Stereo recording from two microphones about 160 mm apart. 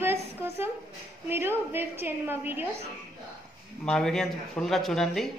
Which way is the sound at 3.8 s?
5° left (ahead or behind).